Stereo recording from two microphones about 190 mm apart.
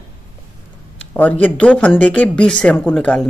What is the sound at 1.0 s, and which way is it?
Speech, 5° left (ahead or behind).